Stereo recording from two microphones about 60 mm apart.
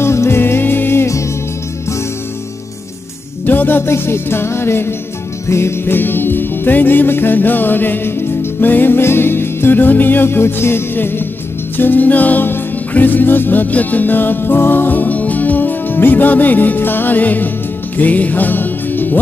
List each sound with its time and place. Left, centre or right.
0.0 s music: left
0.4 s music: left
3.4 s music: left